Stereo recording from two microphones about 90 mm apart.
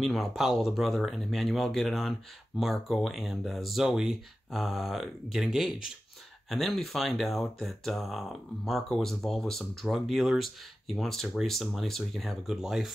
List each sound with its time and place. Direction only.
0.0 s speech: centre (ahead or behind)